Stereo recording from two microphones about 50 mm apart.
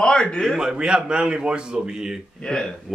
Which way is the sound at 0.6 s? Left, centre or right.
Centre.